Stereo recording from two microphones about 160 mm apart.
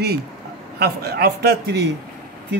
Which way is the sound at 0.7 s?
75° right (ahead or behind).